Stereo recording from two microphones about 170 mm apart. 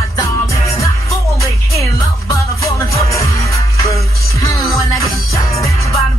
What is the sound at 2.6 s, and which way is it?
Music, 20° left (ahead or behind).